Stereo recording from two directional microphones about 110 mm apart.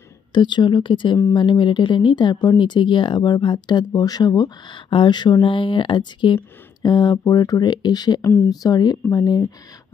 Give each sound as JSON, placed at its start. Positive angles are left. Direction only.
{"t": 0.3, "sound": "speech", "side_deg": 45}